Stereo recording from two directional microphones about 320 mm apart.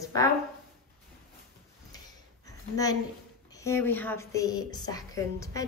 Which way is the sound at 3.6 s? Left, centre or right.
Centre.